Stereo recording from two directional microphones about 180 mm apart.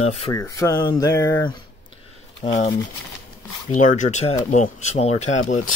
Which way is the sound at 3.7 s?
40° left (ahead or behind).